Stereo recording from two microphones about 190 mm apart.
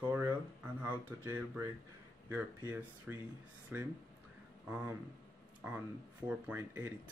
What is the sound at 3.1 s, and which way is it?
Speech, 5° right (ahead or behind).